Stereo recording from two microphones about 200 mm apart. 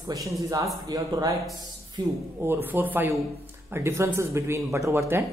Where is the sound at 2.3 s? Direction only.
10° right (ahead or behind).